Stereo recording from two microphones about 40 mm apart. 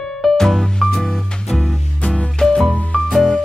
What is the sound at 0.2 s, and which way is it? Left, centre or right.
Music, centre.